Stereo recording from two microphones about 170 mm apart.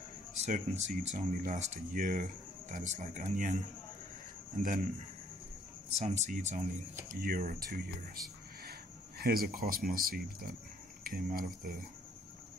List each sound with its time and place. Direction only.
0.4 s speech: 45° right (ahead or behind)
4.6 s speech: 50° right (ahead or behind)
5.9 s speech: 40° right (ahead or behind); by 7.8 s 60° right (ahead or behind)
9.2 s speech: 60° right (ahead or behind)